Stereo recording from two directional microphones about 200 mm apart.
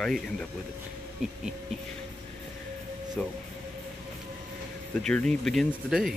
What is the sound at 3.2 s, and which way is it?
Speech, 5° left (ahead or behind).